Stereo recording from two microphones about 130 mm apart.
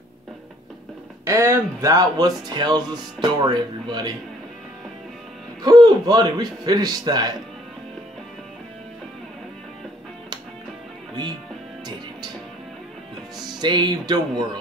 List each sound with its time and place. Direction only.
1.2 s speech: 20° right (ahead or behind)
5.6 s a man's voice: 30° right (ahead or behind)
13.6 s speech: 35° right (ahead or behind)